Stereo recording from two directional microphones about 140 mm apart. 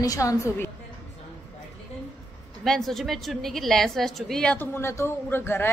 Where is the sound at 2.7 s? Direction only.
Centre (ahead or behind).